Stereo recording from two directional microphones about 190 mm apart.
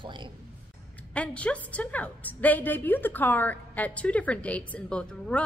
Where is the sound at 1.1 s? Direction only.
5° left (ahead or behind).